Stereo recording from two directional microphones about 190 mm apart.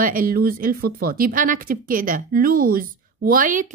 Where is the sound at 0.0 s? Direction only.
50° right (ahead or behind).